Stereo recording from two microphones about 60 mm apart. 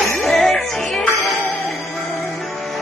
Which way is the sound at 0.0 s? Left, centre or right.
Centre.